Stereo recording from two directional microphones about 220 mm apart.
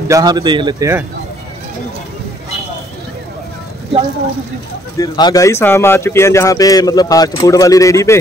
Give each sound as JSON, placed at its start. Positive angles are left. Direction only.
{"t": 0.1, "sound": "speech", "side_deg": -15}
{"t": 4.9, "sound": "speech", "side_deg": 15}